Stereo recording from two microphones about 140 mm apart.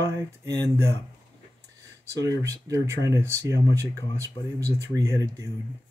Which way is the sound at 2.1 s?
25° right (ahead or behind).